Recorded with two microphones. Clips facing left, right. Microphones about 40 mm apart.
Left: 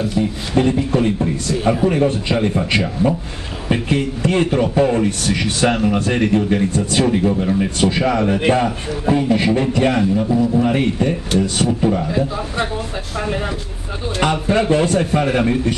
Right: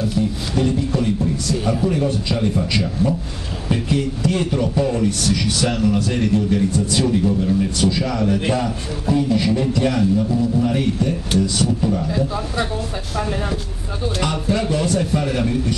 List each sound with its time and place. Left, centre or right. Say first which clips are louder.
0.2 s a man's voice: left 4 dB; left